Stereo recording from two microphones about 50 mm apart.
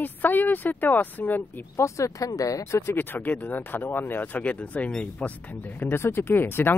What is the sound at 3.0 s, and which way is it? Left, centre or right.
Speech, left.